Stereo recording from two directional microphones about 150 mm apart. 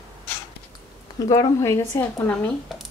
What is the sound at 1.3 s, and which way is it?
Speech, 20° left (ahead or behind).